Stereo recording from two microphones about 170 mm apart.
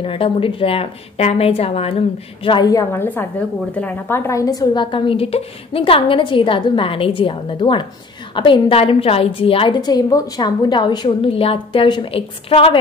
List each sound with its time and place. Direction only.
0.0 s a woman's voice: 30° left (ahead or behind)